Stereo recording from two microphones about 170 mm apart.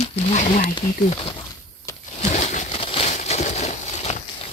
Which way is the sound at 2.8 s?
35° left (ahead or behind).